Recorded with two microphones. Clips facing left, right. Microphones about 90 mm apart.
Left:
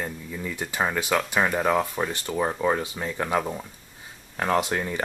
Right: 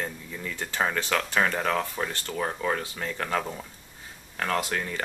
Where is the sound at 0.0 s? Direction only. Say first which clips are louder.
Left 2 dB; 10° left (ahead or behind).